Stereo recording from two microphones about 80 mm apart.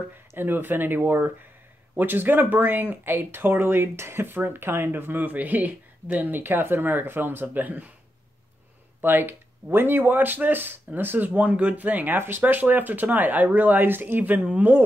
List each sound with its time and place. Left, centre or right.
0.3 s speech: right
9.0 s speech: right